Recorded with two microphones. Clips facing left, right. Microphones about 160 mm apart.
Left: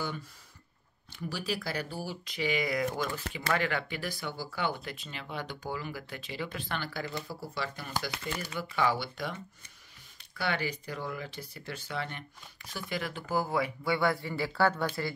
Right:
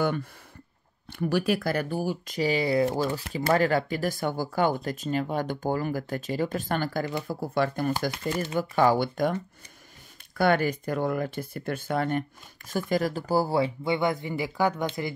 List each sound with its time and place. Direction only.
0.0 s speech: 55° right (ahead or behind); by 15.1 s 20° right (ahead or behind)